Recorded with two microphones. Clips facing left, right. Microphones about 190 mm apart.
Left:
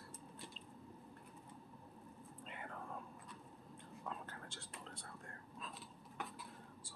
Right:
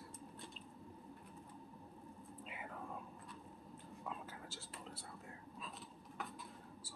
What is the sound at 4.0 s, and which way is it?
Whispering, 5° right (ahead or behind).